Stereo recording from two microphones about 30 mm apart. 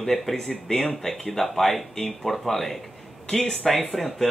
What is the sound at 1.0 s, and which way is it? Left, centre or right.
Speech, centre.